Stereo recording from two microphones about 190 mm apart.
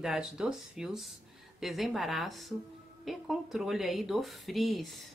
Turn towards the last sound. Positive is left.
turn(degrees=0)  # may be behind; listen again after turning